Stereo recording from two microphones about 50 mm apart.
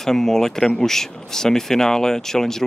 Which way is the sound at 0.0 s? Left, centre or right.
Centre.